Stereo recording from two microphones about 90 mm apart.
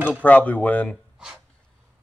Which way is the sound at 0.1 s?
20° left (ahead or behind).